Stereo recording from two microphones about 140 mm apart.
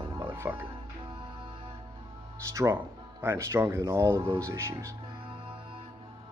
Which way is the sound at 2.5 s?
20° right (ahead or behind).